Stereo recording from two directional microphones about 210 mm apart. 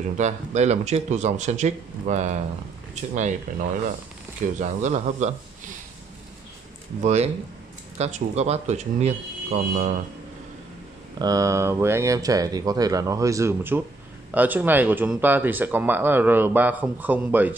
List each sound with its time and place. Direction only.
0.2 s speech: 35° right (ahead or behind)
7.0 s speech: 35° right (ahead or behind)
11.1 s speech: 15° right (ahead or behind)